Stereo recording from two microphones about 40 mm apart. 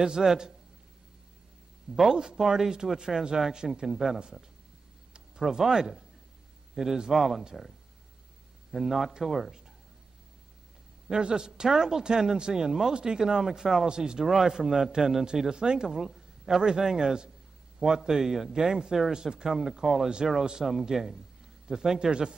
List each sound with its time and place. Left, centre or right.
0.0 s a man's voice: centre
2.0 s a man's voice: centre
5.5 s a man's voice: centre
8.7 s a man's voice: centre
11.1 s a man's voice: centre